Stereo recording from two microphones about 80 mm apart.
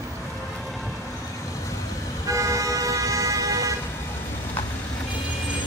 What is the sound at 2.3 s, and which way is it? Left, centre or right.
Vehicle, right.